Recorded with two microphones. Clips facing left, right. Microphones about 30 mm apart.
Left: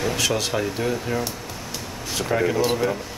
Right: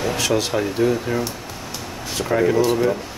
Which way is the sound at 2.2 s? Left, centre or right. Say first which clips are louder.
Right 4 dB; centre.